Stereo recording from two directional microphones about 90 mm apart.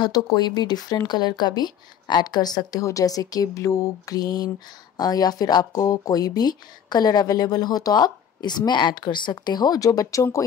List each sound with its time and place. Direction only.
0.0 s speech: 50° left (ahead or behind)